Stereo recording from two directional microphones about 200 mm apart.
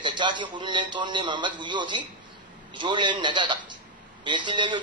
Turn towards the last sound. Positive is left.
turn(degrees=-25)  # may be behind; listen again after turning